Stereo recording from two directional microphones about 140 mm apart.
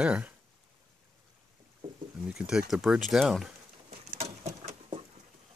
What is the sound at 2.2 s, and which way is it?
Speech, 5° right (ahead or behind).